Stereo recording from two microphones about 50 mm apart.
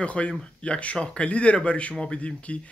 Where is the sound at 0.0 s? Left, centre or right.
Left.